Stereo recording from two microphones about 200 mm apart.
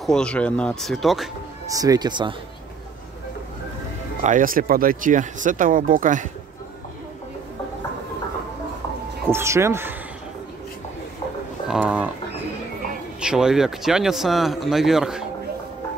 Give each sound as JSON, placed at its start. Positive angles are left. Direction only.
{"t": 0.0, "sound": "speech", "side_deg": 5}
{"t": 1.7, "sound": "speech", "side_deg": -20}
{"t": 4.2, "sound": "speech", "side_deg": -40}
{"t": 9.3, "sound": "speech", "side_deg": -15}
{"t": 11.6, "sound": "speech", "side_deg": -5}
{"t": 13.2, "sound": "speech", "side_deg": -5}